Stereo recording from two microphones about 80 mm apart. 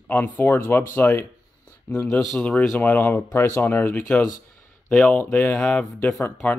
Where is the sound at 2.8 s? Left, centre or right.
Left.